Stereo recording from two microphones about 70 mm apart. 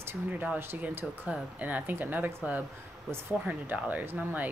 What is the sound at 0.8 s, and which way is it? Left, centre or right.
Speech, right.